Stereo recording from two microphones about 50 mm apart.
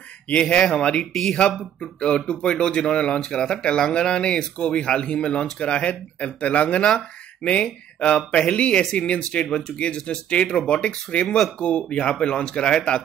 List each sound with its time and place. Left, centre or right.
0.3 s speech: left
11.2 s speech: centre
11.5 s speech: left